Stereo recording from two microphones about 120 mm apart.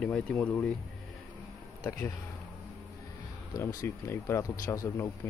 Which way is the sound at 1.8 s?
25° left (ahead or behind).